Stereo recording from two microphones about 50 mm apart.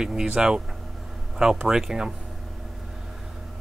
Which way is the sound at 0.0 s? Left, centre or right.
Centre.